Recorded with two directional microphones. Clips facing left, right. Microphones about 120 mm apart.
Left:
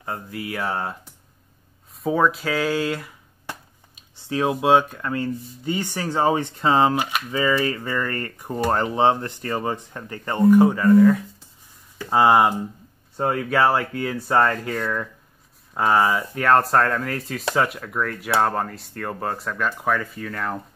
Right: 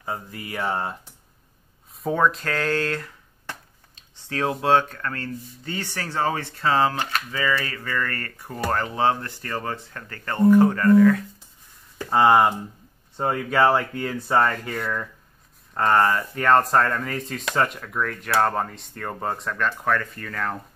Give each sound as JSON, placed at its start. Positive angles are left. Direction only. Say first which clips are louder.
{"t": 0.3, "sound": "speech", "louder": "left 1 dB", "side_deg": 0}
{"t": 2.0, "sound": "speech", "louder": "left 2 dB", "side_deg": 5}